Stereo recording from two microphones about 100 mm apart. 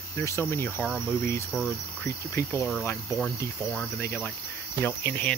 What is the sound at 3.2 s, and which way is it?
Speech, 5° left (ahead or behind).